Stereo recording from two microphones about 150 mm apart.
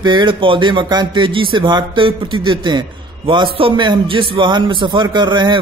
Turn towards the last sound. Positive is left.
turn(degrees=-30)  # may be behind; listen again after turning